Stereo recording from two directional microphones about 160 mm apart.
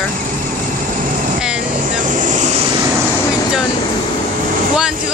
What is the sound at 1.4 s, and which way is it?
Vehicle, 5° right (ahead or behind).